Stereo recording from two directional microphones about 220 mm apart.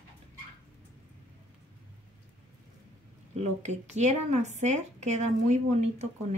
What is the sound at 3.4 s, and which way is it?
Speech, 30° right (ahead or behind).